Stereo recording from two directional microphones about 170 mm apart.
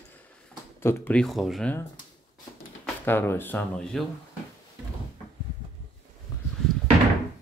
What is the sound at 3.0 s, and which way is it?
Speech, 15° left (ahead or behind).